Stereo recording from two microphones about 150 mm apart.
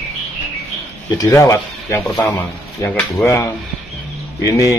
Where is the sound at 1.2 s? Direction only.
20° left (ahead or behind).